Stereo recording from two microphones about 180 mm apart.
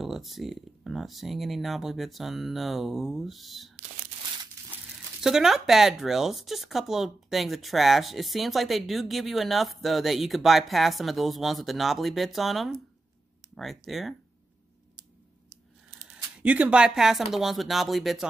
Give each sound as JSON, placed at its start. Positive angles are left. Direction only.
{"t": 0.0, "sound": "speech", "side_deg": 0}
{"t": 4.6, "sound": "a sound", "side_deg": -20}
{"t": 5.2, "sound": "speech", "side_deg": 0}
{"t": 16.0, "sound": "speech", "side_deg": -5}